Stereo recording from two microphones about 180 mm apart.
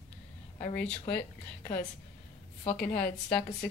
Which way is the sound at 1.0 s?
15° left (ahead or behind).